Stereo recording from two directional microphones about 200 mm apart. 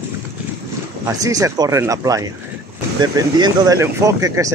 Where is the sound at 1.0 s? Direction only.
15° right (ahead or behind).